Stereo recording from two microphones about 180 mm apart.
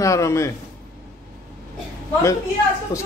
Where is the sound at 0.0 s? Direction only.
15° left (ahead or behind).